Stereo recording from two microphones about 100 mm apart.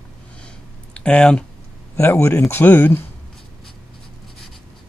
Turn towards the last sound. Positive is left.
turn(degrees=20)  # may be behind; listen again after turning